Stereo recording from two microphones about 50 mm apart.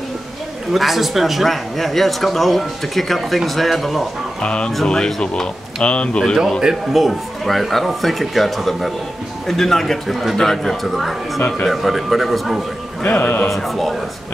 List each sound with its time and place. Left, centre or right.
0.7 s speech: centre
4.4 s speech: left
6.6 s speech: centre
13.0 s speech: left
13.5 s speech: centre